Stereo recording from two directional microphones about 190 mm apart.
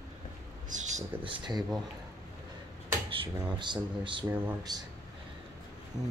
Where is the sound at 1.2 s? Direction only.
25° right (ahead or behind).